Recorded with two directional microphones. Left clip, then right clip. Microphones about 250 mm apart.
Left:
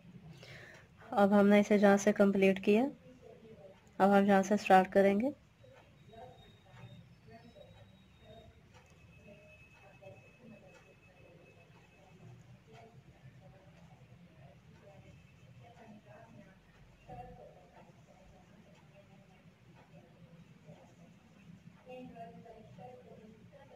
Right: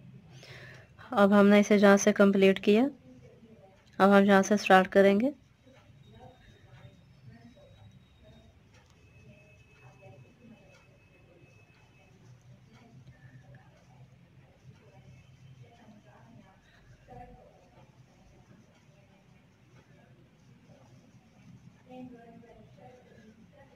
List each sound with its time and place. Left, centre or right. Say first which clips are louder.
0.4 s speech: right 4 dB; centre
3.9 s speech: right 5 dB; centre